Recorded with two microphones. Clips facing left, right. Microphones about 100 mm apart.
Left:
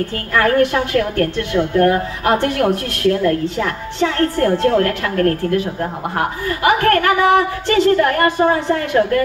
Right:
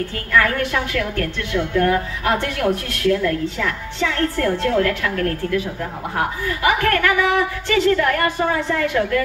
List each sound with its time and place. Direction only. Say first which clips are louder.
0.3 s a woman's voice: left 4 dB; 45° left (ahead or behind)